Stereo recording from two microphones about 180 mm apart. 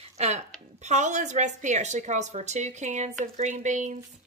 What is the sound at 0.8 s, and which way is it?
A woman's voice, 40° right (ahead or behind).